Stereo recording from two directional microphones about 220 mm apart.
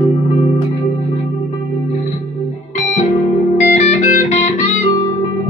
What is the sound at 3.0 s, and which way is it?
Music, 30° left (ahead or behind).